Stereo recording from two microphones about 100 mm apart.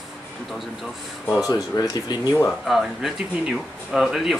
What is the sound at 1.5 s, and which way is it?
Speech, 40° left (ahead or behind).